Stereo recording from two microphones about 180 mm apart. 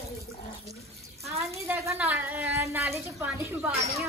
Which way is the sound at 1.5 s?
15° right (ahead or behind).